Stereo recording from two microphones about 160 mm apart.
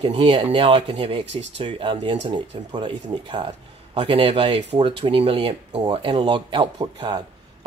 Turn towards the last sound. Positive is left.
turn(degrees=-30)  # may be behind; listen again after turning